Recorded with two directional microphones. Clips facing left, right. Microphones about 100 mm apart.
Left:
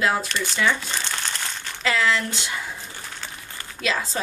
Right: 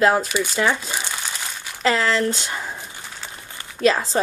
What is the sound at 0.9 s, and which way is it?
Crumpling, 10° right (ahead or behind).